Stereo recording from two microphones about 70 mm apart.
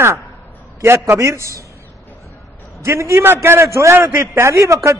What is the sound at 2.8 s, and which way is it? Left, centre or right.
A man's voice, right.